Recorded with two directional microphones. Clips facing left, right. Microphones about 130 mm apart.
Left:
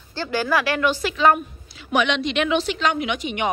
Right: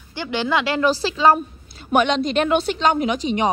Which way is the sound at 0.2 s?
20° right (ahead or behind).